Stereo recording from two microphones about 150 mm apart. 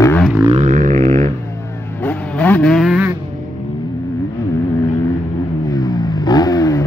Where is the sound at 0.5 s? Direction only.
55° right (ahead or behind).